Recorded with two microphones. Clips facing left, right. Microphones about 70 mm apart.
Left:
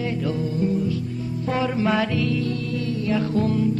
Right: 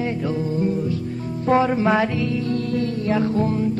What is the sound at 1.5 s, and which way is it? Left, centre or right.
Music, right.